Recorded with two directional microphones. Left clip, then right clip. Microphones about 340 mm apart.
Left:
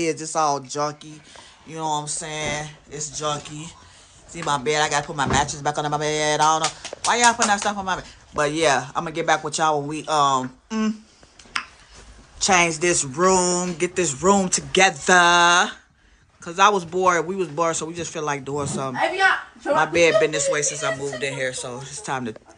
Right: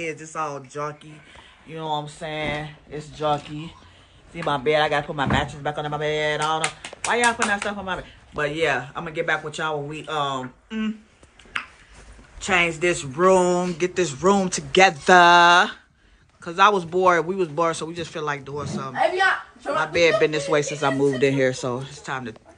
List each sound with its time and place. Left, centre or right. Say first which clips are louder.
0.3 s speech: left 8 dB; centre
1.7 s speech: left 2 dB; centre
12.4 s speech: left 2 dB; centre
22.0 s speech: left 6 dB; centre